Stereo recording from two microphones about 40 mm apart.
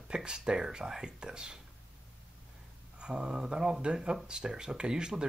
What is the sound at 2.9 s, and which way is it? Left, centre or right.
Speech, right.